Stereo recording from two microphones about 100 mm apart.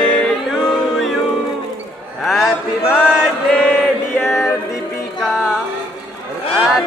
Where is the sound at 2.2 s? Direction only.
Centre (ahead or behind).